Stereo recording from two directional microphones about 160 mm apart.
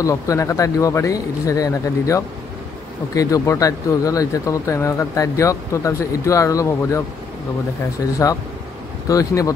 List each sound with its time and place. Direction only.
0.0 s speech: 20° left (ahead or behind)
8.2 s speech: 20° left (ahead or behind)